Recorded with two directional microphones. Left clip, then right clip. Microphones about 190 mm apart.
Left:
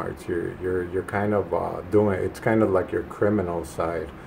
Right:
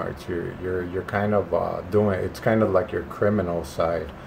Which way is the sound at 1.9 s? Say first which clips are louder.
Left 3 dB; 20° left (ahead or behind).